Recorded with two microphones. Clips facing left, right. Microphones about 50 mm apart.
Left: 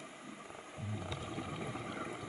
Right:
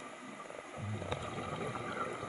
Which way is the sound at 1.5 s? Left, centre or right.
Right.